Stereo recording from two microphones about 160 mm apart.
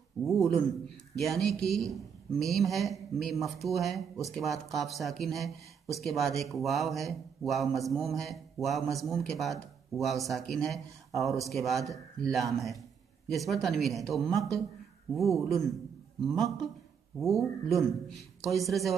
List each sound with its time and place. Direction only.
0.2 s speech: centre (ahead or behind)
17.2 s speech: centre (ahead or behind)